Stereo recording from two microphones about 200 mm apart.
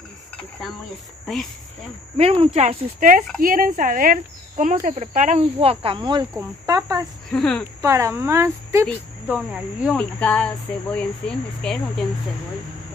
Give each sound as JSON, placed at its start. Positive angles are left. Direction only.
{"t": 1.2, "sound": "speech", "side_deg": 0}
{"t": 2.1, "sound": "speech", "side_deg": -30}
{"t": 7.2, "sound": "speech", "side_deg": 5}
{"t": 7.8, "sound": "speech", "side_deg": -15}
{"t": 8.8, "sound": "speech", "side_deg": -5}